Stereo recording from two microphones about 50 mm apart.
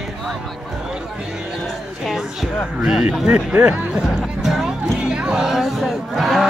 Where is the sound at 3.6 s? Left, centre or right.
Right.